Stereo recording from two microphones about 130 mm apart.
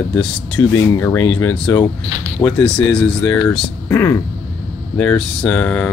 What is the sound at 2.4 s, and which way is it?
Speech, 10° left (ahead or behind).